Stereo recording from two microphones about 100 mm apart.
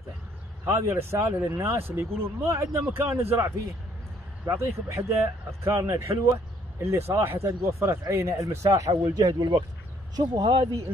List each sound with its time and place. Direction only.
0.7 s speech: 30° right (ahead or behind); by 10.8 s 50° right (ahead or behind)